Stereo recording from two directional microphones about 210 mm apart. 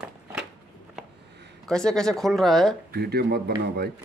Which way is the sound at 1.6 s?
5° left (ahead or behind).